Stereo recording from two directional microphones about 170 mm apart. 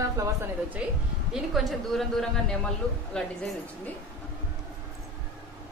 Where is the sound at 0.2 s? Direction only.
15° right (ahead or behind).